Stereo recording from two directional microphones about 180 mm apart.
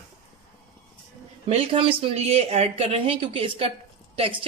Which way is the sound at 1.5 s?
30° right (ahead or behind).